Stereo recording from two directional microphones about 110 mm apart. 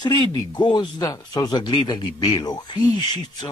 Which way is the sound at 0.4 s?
40° left (ahead or behind).